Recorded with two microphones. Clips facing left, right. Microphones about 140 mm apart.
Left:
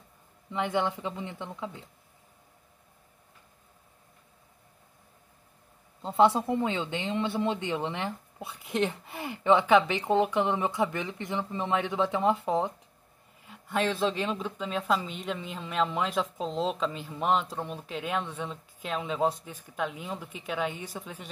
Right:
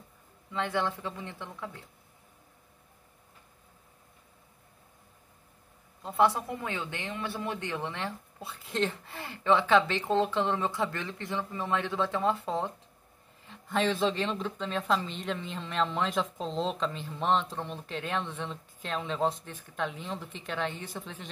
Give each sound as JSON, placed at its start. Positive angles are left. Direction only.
{"t": 0.5, "sound": "speech", "side_deg": 20}
{"t": 6.0, "sound": "a woman's voice", "side_deg": 25}
{"t": 13.4, "sound": "a woman's voice", "side_deg": 5}